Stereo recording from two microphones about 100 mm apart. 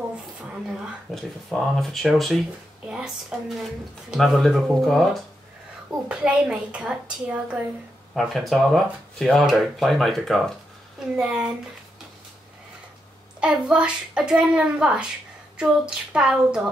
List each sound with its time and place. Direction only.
1.1 s speech: centre (ahead or behind)
6.0 s a child's voice: 10° right (ahead or behind)
8.1 s a child's voice: centre (ahead or behind)
13.4 s a child's voice: 10° right (ahead or behind)